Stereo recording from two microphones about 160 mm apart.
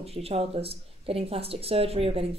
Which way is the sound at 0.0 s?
40° right (ahead or behind).